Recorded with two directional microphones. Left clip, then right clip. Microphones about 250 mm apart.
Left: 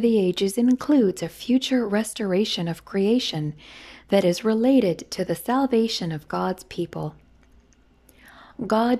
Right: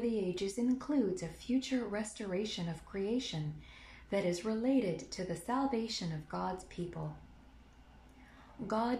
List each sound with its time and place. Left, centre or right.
0.0 s speech: left
8.6 s speech: left